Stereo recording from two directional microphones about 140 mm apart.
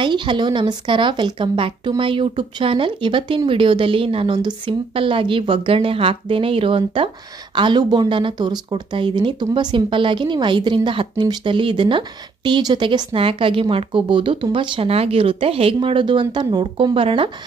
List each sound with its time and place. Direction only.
0.0 s speech: 35° right (ahead or behind)